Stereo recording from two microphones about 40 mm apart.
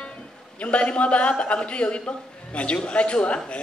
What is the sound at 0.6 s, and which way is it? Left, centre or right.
A man's voice, left.